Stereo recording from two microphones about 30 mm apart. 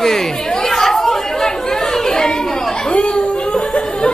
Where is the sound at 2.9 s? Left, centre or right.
Left.